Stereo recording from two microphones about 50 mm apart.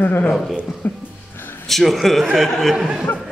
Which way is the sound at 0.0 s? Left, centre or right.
Left.